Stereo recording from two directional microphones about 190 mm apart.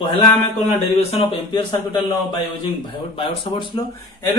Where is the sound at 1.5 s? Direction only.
25° left (ahead or behind).